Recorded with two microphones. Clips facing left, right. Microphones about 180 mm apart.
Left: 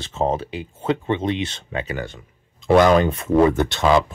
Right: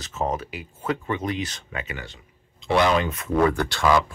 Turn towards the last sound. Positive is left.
turn(degrees=20)  # may be behind; listen again after turning